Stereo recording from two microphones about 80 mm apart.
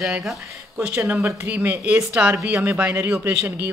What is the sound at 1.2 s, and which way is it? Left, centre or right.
Speech, right.